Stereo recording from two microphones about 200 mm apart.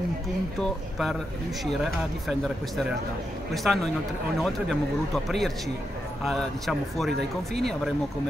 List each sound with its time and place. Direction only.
0.6 s speech: centre (ahead or behind)
2.2 s speech: centre (ahead or behind)
7.1 s speech: 55° right (ahead or behind)